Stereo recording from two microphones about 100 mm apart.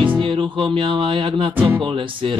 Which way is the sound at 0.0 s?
55° right (ahead or behind).